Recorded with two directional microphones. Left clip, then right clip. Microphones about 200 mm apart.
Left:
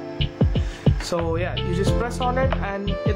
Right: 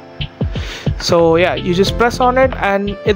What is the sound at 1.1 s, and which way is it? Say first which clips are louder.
Speech: right 16 dB; 40° right (ahead or behind).